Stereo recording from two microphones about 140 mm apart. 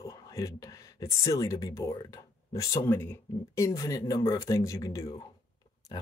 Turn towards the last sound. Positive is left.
turn(degrees=25)  # may be behind; listen again after turning